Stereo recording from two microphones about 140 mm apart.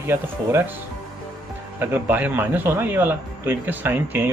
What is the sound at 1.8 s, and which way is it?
Speech, 15° right (ahead or behind).